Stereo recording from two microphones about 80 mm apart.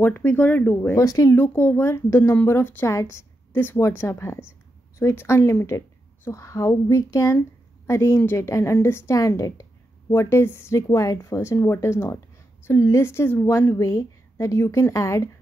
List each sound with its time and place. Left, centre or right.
0.0 s speech: left
0.9 s speech: left
1.3 s a woman's voice: left
10.0 s speech: left